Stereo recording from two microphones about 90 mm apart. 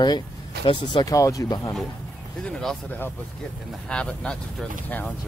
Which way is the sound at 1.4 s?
50° left (ahead or behind).